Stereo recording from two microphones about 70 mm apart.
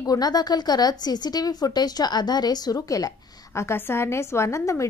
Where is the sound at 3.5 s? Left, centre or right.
Left.